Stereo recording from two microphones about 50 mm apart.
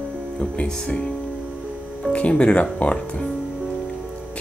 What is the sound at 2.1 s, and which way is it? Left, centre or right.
Speech, left.